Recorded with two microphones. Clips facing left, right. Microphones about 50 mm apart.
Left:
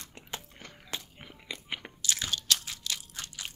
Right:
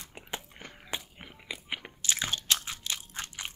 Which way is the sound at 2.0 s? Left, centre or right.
Right.